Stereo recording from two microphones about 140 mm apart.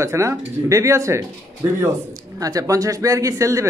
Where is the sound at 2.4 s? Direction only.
25° right (ahead or behind).